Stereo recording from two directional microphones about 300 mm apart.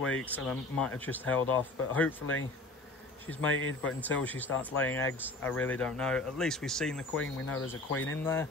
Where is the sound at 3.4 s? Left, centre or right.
Left.